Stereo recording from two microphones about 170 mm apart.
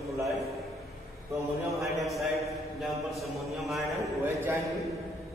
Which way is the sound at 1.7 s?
Centre (ahead or behind).